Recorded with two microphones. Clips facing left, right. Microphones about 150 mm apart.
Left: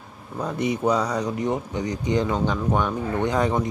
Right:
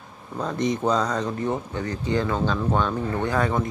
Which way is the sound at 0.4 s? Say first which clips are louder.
Even; 10° left (ahead or behind).